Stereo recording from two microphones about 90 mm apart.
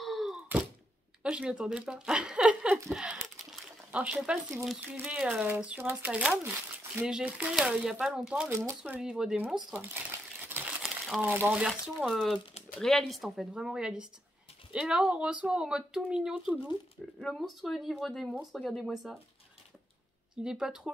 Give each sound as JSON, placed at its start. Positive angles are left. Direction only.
{"t": 0.0, "sound": "thunk", "side_deg": 0}
{"t": 1.2, "sound": "speech", "side_deg": -10}
{"t": 8.5, "sound": "speech", "side_deg": -30}
{"t": 8.9, "sound": "speech", "side_deg": -10}
{"t": 9.9, "sound": "crumpling", "side_deg": -20}
{"t": 11.1, "sound": "speech", "side_deg": -25}
{"t": 11.5, "sound": "speech", "side_deg": -5}
{"t": 17.2, "sound": "speech", "side_deg": 5}
{"t": 20.4, "sound": "speech", "side_deg": -5}